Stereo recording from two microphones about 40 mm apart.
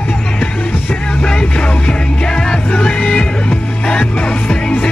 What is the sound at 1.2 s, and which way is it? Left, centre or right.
Music, left.